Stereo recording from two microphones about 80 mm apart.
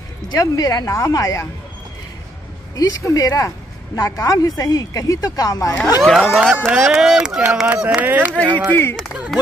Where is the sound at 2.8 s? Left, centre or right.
Left.